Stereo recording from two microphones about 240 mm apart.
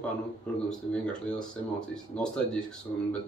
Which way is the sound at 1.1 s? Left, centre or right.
Centre.